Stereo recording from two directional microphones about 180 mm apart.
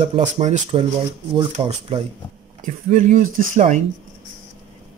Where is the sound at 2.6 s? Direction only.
45° right (ahead or behind).